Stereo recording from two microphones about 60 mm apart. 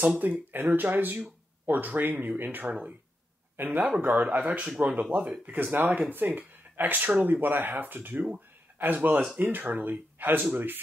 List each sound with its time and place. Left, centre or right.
0.2 s speech: right
5.5 s speech: right